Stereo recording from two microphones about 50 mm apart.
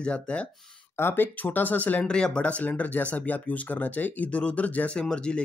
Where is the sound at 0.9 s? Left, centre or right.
Left.